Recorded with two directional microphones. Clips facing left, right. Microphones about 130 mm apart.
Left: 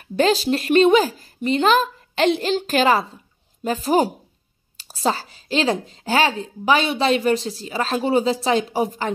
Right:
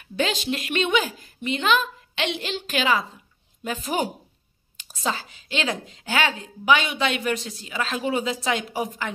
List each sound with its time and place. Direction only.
0.0 s a woman's voice: 35° left (ahead or behind)